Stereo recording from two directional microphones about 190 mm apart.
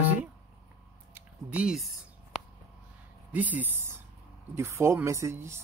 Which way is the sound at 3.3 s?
10° right (ahead or behind).